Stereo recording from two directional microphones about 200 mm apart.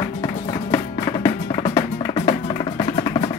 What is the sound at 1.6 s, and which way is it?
Music, 30° left (ahead or behind).